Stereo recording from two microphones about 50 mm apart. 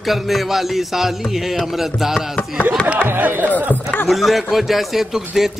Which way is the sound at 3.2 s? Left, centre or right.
Right.